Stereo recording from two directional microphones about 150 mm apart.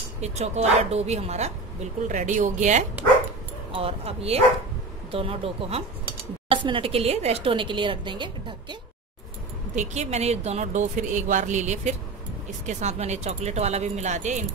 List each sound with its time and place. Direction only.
0.2 s speech: 45° right (ahead or behind)
3.7 s speech: 40° right (ahead or behind)
9.8 s speech: 50° right (ahead or behind)